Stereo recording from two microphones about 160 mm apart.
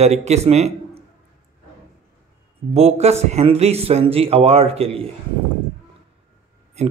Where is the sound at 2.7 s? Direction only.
40° right (ahead or behind).